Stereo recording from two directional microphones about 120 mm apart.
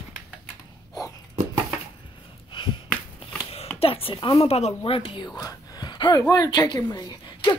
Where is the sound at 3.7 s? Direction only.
50° left (ahead or behind).